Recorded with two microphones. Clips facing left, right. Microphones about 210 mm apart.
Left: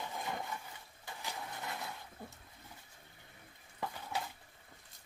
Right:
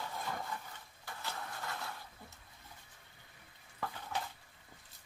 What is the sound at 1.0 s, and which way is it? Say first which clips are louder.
Vehicle: even; 15° left (ahead or behind).